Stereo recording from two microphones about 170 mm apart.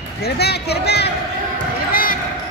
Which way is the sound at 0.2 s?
70° left (ahead or behind).